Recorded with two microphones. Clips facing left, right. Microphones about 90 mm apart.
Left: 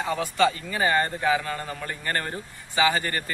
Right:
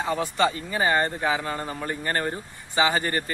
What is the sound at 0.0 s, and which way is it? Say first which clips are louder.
A man's voice: left 1 dB; 20° right (ahead or behind).